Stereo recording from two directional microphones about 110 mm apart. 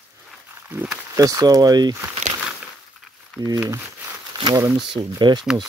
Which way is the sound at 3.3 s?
10° left (ahead or behind).